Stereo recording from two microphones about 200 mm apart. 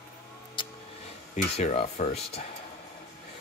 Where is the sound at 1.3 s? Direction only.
35° left (ahead or behind).